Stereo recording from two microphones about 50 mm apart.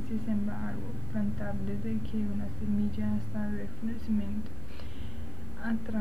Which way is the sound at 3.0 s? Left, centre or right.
Right.